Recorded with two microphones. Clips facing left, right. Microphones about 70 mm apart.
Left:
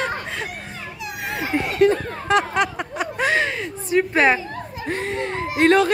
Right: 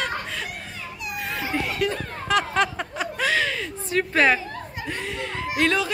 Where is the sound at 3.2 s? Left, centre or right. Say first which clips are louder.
Left 3 dB; left.